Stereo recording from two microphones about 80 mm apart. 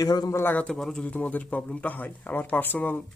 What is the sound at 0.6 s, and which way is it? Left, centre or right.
Speech, centre.